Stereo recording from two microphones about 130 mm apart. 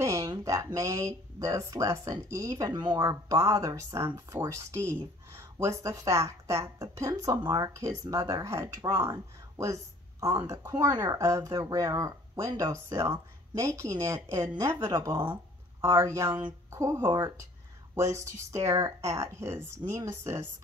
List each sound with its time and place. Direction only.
0.0 s speech: 25° right (ahead or behind)
15.8 s speech: 20° right (ahead or behind)